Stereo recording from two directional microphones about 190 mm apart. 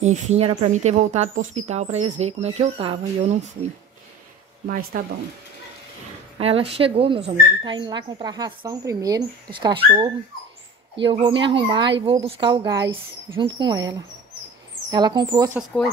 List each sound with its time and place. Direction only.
0.0 s speech: 35° right (ahead or behind)
4.9 s speech: 45° right (ahead or behind)
6.4 s speech: 30° right (ahead or behind)